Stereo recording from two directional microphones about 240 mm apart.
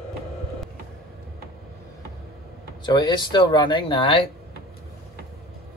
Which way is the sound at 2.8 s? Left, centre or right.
Centre.